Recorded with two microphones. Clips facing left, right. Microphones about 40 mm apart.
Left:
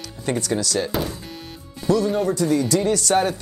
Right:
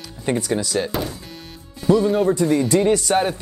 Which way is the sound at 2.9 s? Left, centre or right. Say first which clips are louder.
Even; centre.